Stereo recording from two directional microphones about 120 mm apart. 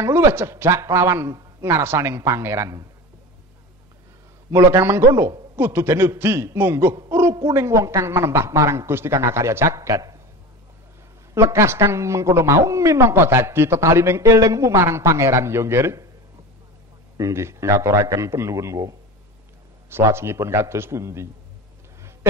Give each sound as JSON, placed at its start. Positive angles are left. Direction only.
{"t": 0.0, "sound": "speech", "side_deg": -20}
{"t": 4.5, "sound": "speech", "side_deg": -25}
{"t": 7.1, "sound": "a sound", "side_deg": -20}
{"t": 7.3, "sound": "speech", "side_deg": -25}
{"t": 11.3, "sound": "speech", "side_deg": -20}
{"t": 17.2, "sound": "speech", "side_deg": -25}